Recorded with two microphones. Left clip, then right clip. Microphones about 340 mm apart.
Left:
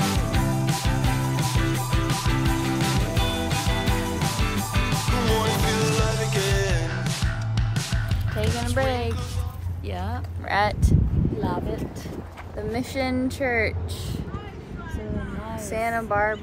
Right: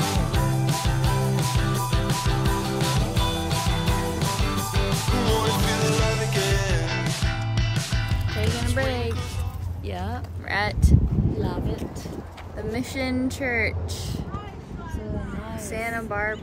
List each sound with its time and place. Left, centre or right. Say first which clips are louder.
0.0 s music: even; centre
10.5 s speech: left 3 dB; centre
15.7 s speech: left 4 dB; centre